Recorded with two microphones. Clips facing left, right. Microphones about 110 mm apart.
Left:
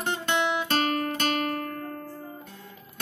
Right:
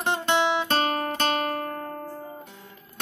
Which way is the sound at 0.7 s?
40° right (ahead or behind).